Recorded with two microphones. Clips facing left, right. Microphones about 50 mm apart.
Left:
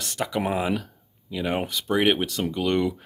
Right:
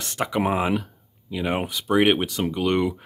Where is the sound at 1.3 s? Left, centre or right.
Centre.